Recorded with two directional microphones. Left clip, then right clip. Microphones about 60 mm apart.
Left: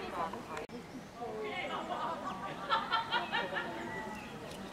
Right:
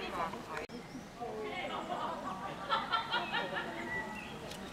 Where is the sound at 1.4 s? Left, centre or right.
Centre.